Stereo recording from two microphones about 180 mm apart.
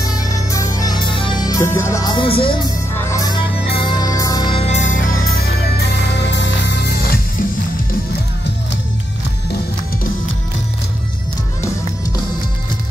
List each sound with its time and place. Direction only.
0.0 s music: 20° left (ahead or behind)
3.0 s music: 20° left (ahead or behind); by 5.5 s 45° left (ahead or behind)
6.1 s music: 75° left (ahead or behind)